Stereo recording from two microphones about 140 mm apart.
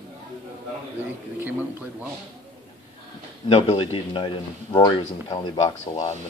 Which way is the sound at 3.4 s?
40° left (ahead or behind).